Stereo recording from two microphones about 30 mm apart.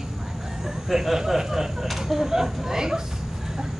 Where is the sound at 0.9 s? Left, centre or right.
Centre.